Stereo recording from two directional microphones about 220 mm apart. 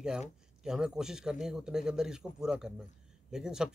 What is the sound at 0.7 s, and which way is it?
A man's voice, 5° right (ahead or behind).